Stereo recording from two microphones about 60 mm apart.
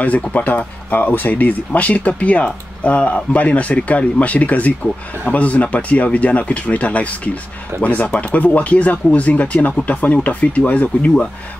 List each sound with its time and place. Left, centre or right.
0.0 s speech: left